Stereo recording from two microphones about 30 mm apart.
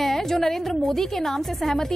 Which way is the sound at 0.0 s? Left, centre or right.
Centre.